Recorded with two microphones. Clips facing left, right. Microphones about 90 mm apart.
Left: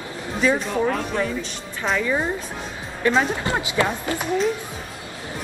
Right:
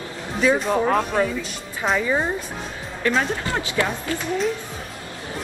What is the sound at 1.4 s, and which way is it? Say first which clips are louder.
Speech: right 1 dB; 5° right (ahead or behind).